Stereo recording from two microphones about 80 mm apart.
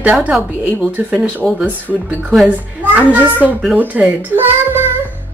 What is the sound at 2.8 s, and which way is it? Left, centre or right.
A child's voice, right.